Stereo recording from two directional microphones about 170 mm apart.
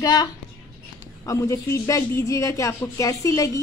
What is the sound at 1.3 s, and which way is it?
A woman's voice, 15° left (ahead or behind).